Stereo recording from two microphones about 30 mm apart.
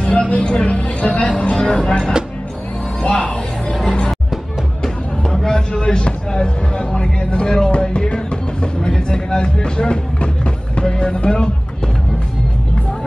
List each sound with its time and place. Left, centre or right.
0.3 s a sound: left
1.7 s speech: left
3.0 s music: left
5.5 s music: left